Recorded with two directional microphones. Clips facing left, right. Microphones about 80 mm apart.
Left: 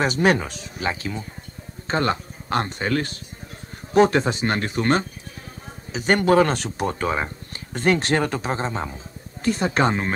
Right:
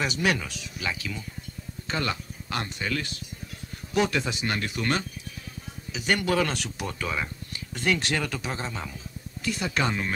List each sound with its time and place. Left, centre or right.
0.0 s speech: left